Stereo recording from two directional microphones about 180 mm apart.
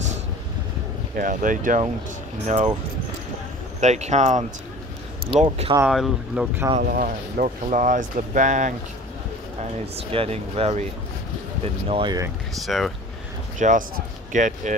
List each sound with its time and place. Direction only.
1.1 s speech: 50° right (ahead or behind)
3.8 s speech: 40° right (ahead or behind)
5.9 s speech: centre (ahead or behind)
6.8 s speech: 55° right (ahead or behind)
10.1 s speech: 35° right (ahead or behind)
12.6 s speech: centre (ahead or behind)
13.6 s speech: 45° right (ahead or behind)